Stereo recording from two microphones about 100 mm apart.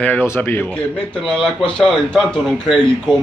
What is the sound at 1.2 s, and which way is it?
A man's voice, 5° left (ahead or behind).